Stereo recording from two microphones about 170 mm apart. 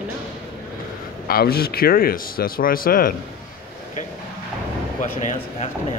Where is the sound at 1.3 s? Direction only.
65° left (ahead or behind).